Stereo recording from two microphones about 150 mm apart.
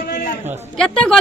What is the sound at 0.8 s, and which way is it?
Speech, 5° left (ahead or behind).